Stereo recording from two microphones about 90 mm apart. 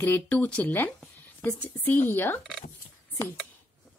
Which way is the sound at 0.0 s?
20° left (ahead or behind).